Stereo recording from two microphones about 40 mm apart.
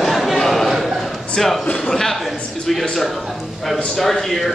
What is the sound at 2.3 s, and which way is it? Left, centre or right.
Speech, left.